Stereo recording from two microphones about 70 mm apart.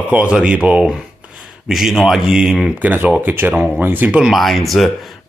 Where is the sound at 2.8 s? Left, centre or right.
Right.